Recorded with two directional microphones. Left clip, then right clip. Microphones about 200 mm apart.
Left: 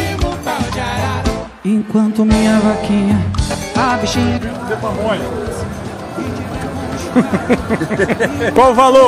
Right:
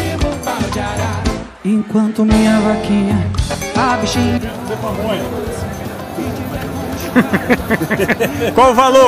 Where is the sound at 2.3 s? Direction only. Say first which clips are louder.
Right 1 dB; centre (ahead or behind).